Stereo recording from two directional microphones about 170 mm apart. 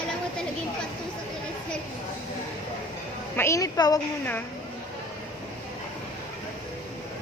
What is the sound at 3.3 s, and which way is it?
Speech, 15° left (ahead or behind).